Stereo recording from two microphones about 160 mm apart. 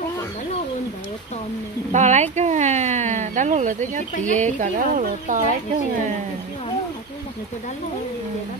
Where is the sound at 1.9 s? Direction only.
45° right (ahead or behind).